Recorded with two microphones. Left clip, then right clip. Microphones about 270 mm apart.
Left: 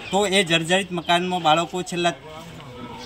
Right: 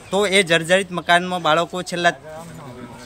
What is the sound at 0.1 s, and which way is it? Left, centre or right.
A man's voice, centre.